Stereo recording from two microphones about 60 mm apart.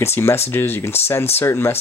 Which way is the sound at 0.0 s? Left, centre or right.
Left.